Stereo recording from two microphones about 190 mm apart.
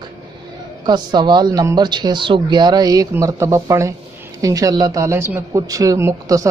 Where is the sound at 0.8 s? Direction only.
25° right (ahead or behind).